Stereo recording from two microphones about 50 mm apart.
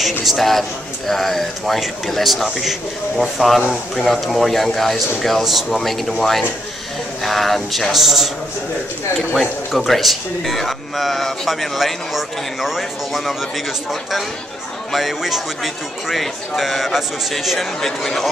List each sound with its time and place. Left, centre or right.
0.2 s speech: centre
9.3 s speech: centre
14.9 s speech: centre